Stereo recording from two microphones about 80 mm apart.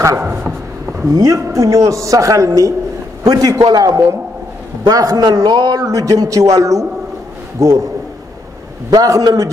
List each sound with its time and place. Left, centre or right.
1.1 s a man's voice: right
8.9 s a man's voice: right